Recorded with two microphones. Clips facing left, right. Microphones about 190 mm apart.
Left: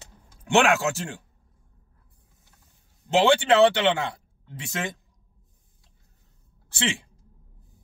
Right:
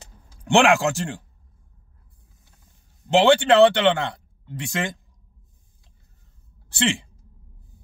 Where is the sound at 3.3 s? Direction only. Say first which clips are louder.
Right 3 dB; 5° left (ahead or behind).